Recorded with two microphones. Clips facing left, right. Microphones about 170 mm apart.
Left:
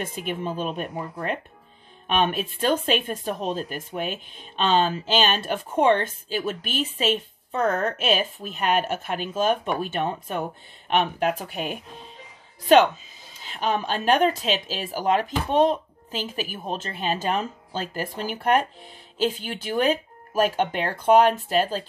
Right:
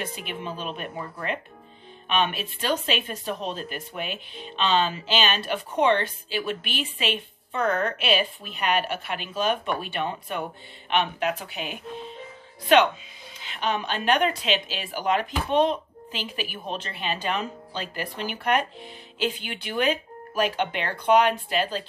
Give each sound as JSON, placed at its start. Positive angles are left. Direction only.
{"t": 0.0, "sound": "speech", "side_deg": 50}
{"t": 13.4, "sound": "speech", "side_deg": 40}